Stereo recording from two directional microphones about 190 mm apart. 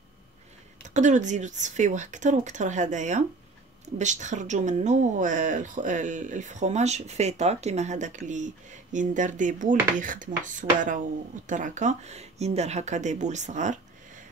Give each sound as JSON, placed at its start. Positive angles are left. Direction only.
{"t": 0.8, "sound": "a woman's voice", "side_deg": -40}